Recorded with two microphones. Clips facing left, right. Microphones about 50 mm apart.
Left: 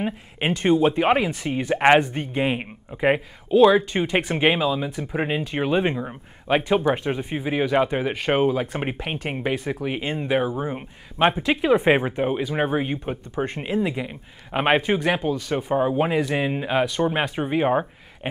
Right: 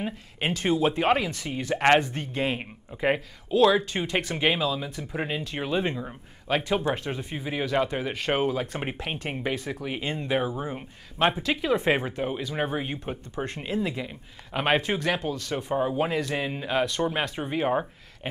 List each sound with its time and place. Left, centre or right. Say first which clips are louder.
0.0 s speech: left 4 dB; centre